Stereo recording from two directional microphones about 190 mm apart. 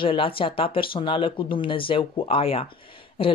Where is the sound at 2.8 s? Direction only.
25° left (ahead or behind).